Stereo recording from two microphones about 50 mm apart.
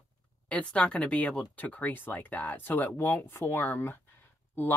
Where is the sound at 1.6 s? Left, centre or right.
Left.